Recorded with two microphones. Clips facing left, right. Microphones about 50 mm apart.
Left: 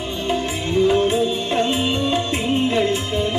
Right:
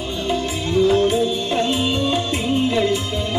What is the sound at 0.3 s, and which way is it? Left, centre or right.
Music, left.